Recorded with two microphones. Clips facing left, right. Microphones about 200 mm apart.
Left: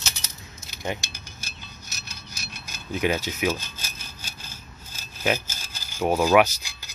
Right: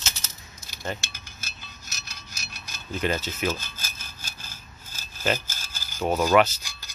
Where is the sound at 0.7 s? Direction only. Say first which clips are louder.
Left 2 dB; 15° left (ahead or behind).